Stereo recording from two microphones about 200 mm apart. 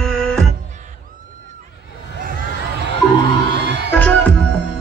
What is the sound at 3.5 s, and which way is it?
Music, 55° right (ahead or behind).